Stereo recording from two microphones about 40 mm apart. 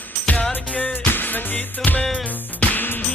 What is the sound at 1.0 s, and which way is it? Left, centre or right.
Music, left.